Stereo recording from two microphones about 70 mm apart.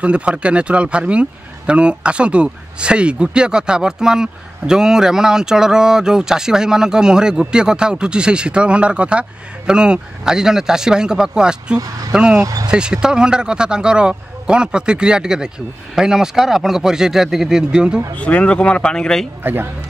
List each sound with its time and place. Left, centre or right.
0.0 s speech: centre
18.1 s speech: centre
19.4 s speech: right